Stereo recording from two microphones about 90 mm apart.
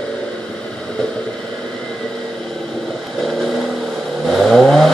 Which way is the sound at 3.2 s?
5° left (ahead or behind).